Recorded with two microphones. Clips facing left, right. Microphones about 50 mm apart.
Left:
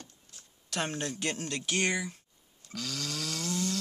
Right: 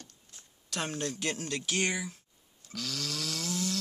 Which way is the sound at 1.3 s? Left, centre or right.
Centre.